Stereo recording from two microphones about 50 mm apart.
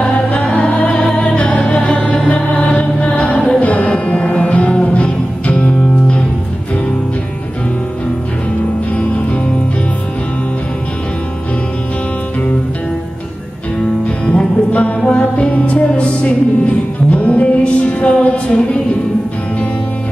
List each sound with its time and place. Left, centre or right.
0.0 s music: left
8.9 s music: left
14.0 s music: left